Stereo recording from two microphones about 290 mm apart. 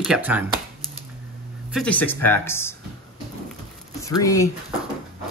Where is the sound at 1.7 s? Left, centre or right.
Centre.